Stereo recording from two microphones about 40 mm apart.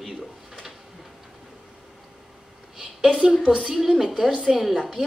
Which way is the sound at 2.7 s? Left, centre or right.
Centre.